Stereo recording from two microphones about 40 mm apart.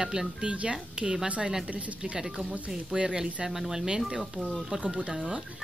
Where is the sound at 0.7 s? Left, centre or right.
Centre.